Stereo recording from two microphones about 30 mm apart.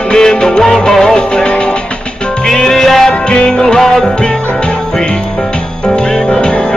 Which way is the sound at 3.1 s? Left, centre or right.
Left.